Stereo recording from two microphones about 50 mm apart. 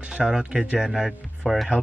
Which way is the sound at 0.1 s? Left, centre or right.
Centre.